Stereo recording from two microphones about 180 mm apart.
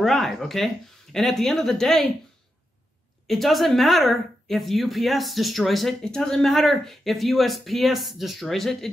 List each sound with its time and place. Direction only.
0.0 s speech: centre (ahead or behind)
3.3 s speech: centre (ahead or behind)